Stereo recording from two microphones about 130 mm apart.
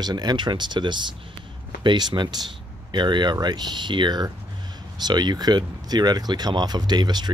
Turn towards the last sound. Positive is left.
turn(degrees=-35)  # may be behind; listen again after turning